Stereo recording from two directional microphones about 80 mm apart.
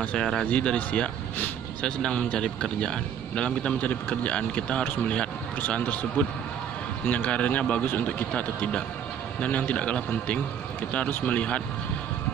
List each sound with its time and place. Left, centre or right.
0.2 s speech: centre